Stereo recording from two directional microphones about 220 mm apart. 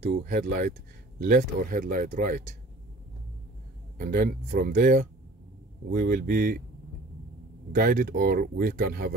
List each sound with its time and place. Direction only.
0.2 s speech: 40° right (ahead or behind)
4.0 s speech: 40° right (ahead or behind)
7.7 s speech: 40° right (ahead or behind)